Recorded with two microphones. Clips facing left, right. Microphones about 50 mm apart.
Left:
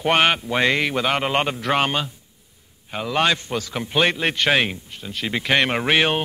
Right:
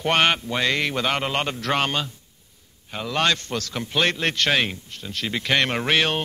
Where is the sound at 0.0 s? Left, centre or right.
Centre.